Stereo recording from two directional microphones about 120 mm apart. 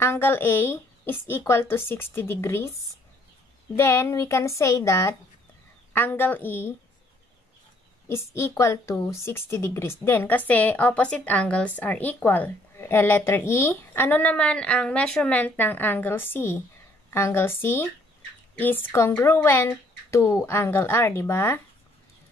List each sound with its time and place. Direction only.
0.0 s speech: 20° left (ahead or behind)
3.7 s a woman's voice: 20° left (ahead or behind)
8.1 s a woman's voice: 25° left (ahead or behind)